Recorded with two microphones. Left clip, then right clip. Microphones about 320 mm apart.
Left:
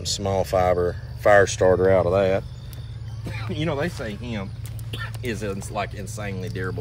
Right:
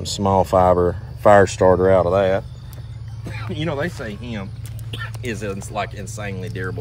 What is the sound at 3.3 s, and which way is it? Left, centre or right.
Speech, centre.